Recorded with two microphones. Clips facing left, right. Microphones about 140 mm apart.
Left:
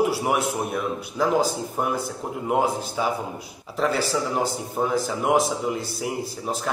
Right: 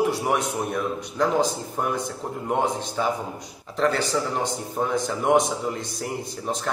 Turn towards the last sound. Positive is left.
turn(degrees=5)  # may be behind; listen again after turning